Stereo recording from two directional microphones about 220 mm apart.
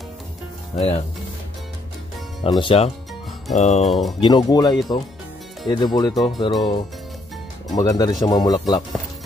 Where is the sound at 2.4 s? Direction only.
20° left (ahead or behind).